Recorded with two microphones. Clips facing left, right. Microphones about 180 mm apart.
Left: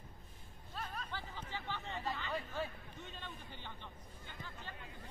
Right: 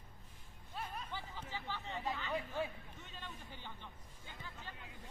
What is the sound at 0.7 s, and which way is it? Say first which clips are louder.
Hubbub: even; 15° right (ahead or behind).